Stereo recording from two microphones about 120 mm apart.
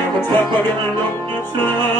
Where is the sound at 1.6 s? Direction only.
15° left (ahead or behind).